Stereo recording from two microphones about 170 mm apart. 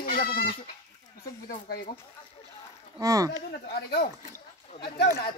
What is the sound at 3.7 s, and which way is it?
Speech, 75° left (ahead or behind).